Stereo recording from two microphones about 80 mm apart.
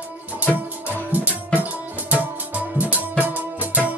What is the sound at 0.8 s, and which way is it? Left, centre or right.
Music, right.